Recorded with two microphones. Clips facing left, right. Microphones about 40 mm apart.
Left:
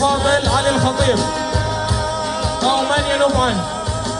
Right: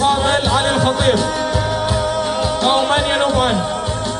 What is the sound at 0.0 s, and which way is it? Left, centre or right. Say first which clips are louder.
Music: even; right.